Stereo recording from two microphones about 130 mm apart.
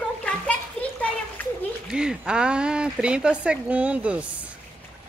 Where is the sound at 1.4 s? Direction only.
15° left (ahead or behind).